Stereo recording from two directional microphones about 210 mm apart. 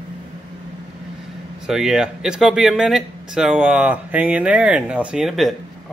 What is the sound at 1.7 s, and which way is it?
Speech, centre (ahead or behind).